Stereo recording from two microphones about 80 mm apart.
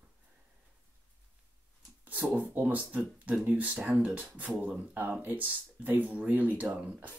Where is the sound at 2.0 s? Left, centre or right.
Right.